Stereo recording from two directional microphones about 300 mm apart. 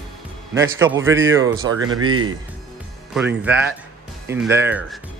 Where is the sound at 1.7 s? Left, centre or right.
Right.